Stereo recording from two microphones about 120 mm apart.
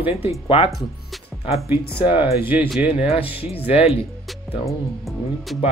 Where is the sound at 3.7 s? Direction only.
55° left (ahead or behind).